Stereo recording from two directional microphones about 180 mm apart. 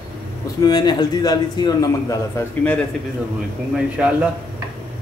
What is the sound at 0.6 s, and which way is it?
A man's voice, 25° left (ahead or behind).